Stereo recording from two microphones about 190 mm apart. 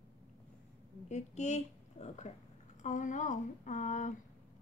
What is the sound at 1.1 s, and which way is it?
A woman's voice, 35° left (ahead or behind).